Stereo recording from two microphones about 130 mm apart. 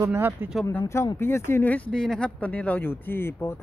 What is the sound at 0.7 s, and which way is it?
Speech, 20° left (ahead or behind).